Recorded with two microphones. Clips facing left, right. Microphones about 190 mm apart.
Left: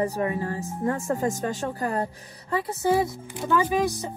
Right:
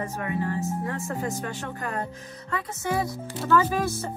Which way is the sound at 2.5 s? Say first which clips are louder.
Left 6 dB; 30° left (ahead or behind).